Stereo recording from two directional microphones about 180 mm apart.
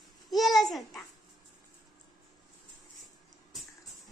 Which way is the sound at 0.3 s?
Centre (ahead or behind).